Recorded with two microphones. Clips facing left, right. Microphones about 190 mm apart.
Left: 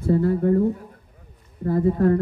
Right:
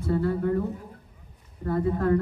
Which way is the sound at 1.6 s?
35° left (ahead or behind).